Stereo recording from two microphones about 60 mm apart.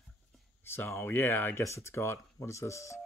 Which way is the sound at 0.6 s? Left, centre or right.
Left.